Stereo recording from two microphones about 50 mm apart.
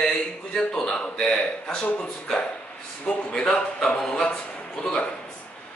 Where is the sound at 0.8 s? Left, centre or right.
Left.